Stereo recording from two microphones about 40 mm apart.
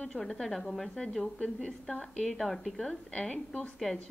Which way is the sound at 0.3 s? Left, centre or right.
Centre.